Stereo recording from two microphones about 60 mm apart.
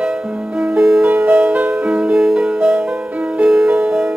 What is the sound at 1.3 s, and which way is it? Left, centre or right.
Music, centre.